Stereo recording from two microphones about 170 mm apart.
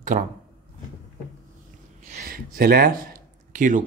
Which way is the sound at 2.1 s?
55° right (ahead or behind).